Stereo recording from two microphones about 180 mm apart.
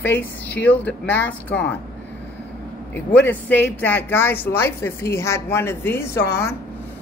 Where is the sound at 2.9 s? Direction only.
10° left (ahead or behind).